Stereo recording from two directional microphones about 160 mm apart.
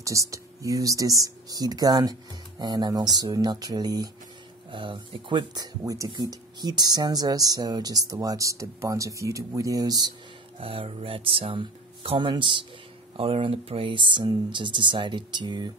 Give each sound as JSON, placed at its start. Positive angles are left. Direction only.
{"t": 0.0, "sound": "speech", "side_deg": -20}
{"t": 10.6, "sound": "speech", "side_deg": -35}